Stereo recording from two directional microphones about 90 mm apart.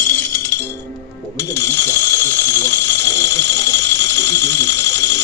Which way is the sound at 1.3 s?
35° left (ahead or behind).